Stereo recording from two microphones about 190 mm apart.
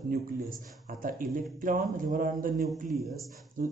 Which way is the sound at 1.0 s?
45° right (ahead or behind).